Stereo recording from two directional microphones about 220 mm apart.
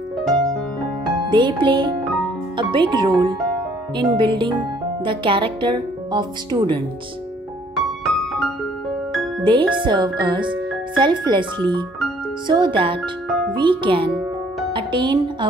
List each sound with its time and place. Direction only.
1.3 s speech: 20° right (ahead or behind)
7.7 s music: centre (ahead or behind)
9.4 s speech: 20° right (ahead or behind)
12.4 s speech: 20° right (ahead or behind)